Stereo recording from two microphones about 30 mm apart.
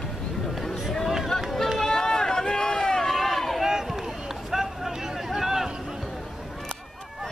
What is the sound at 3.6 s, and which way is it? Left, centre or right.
Run, centre.